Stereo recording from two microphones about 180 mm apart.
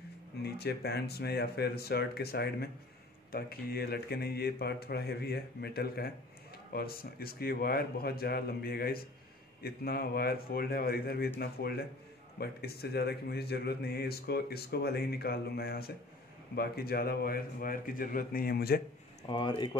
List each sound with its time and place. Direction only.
0.4 s speech: 60° left (ahead or behind)
19.2 s speech: 25° left (ahead or behind)